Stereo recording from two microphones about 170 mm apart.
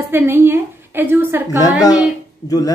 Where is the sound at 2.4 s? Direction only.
20° left (ahead or behind).